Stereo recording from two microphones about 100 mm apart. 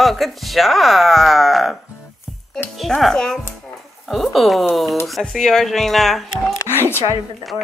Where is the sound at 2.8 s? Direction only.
Centre (ahead or behind).